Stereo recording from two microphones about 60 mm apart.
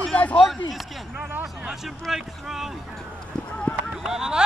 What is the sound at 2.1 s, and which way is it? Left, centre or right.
Boat, centre.